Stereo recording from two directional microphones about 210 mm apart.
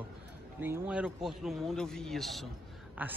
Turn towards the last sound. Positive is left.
turn(degrees=-10)  # may be behind; listen again after turning